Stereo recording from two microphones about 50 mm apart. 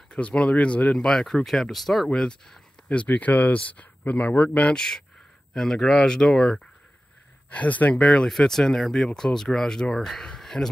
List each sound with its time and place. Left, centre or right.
0.1 s speech: left
0.9 s speech: centre
2.1 s speech: centre
3.1 s speech: left
4.7 s speech: centre
7.5 s speech: left
7.9 s speech: centre